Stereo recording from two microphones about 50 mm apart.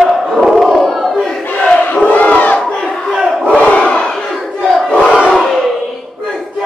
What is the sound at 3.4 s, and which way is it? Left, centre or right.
Crowd, left.